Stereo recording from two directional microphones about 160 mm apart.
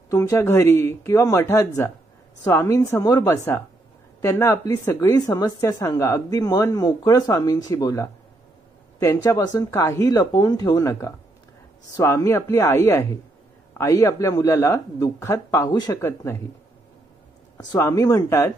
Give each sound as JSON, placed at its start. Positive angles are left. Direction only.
{"t": 0.1, "sound": "speech", "side_deg": 20}
{"t": 17.6, "sound": "speech", "side_deg": 20}